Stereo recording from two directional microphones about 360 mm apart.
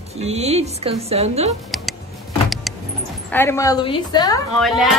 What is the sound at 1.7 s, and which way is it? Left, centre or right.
Power windows, centre.